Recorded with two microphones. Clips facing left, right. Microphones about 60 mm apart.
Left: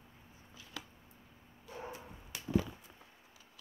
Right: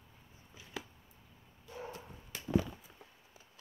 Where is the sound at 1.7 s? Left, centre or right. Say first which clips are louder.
Even; centre.